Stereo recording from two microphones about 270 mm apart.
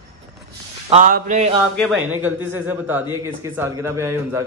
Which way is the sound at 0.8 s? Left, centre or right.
Right.